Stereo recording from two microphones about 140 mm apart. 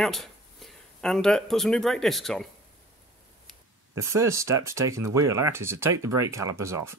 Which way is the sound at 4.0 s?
20° right (ahead or behind).